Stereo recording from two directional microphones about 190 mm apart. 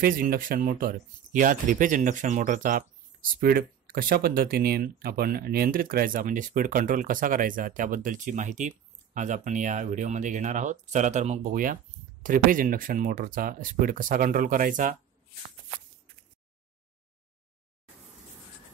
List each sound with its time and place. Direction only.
0.0 s speech: 50° right (ahead or behind)